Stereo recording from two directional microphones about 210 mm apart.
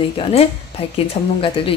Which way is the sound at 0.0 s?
30° left (ahead or behind).